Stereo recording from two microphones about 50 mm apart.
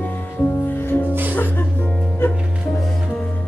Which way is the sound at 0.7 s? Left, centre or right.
Left.